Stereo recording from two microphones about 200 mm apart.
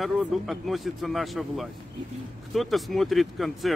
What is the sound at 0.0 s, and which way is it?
Speech, centre (ahead or behind).